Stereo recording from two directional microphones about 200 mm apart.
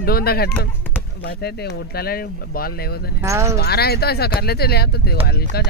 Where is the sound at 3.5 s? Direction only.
50° left (ahead or behind).